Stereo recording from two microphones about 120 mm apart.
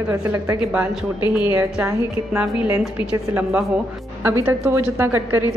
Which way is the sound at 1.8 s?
15° right (ahead or behind).